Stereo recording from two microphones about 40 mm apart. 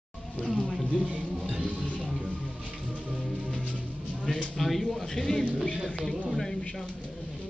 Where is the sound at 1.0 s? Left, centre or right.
Right.